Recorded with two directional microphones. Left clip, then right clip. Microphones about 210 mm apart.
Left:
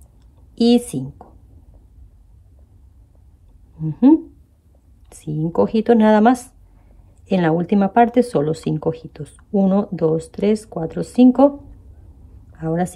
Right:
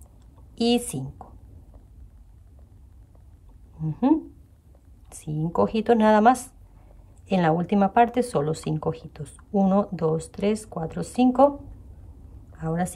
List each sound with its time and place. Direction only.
0.6 s a woman's voice: 5° right (ahead or behind)
3.8 s speech: 5° right (ahead or behind)
5.6 s speech: 5° right (ahead or behind)
7.3 s speech: 5° right (ahead or behind)
12.5 s speech: 5° right (ahead or behind)